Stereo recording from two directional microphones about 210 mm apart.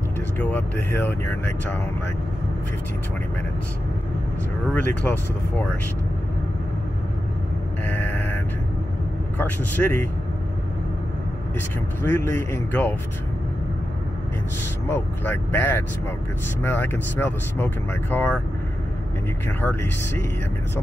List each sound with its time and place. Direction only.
0.4 s speech: 5° left (ahead or behind)
4.7 s speech: 10° left (ahead or behind)
7.8 s a sound: 10° left (ahead or behind)
9.4 s speech: 10° left (ahead or behind)
12.0 s speech: 10° left (ahead or behind)
14.9 s speech: 10° left (ahead or behind)
19.6 s speech: 10° left (ahead or behind)